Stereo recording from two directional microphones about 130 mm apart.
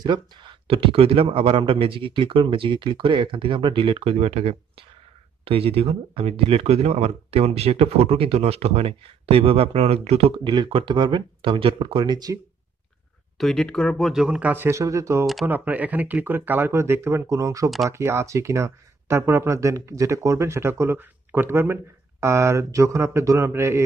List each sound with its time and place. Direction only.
0.0 s speech: 40° right (ahead or behind)
13.4 s speech: 5° left (ahead or behind); by 15.2 s 25° right (ahead or behind)
15.4 s speech: 15° right (ahead or behind)